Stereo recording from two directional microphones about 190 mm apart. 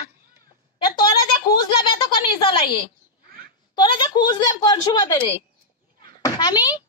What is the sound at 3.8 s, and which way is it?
Speech, 25° left (ahead or behind).